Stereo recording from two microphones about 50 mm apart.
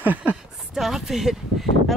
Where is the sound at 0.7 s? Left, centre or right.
Centre.